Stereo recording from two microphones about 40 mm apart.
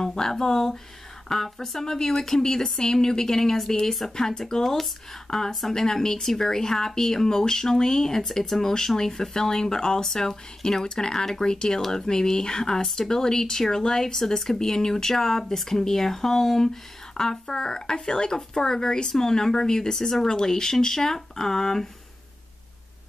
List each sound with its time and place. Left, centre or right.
0.0 s speech: centre
4.1 s speech: centre